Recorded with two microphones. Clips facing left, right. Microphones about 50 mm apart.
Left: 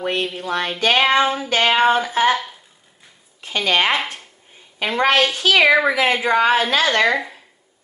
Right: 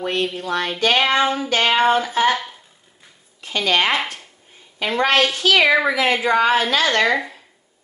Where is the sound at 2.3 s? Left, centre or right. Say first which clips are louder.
Left 1 dB; centre.